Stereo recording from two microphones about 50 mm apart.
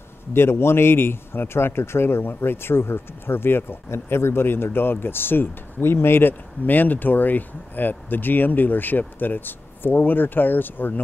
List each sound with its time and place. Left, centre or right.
0.3 s a man's voice: left
6.6 s speech: left